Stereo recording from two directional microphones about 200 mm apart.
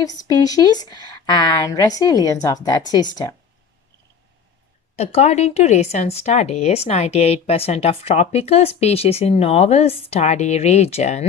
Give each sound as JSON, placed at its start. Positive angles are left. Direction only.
{"t": 0.0, "sound": "a woman's voice", "side_deg": 20}
{"t": 4.9, "sound": "speech", "side_deg": 30}